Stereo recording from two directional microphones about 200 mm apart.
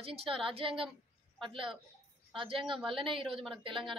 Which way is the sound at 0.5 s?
25° right (ahead or behind).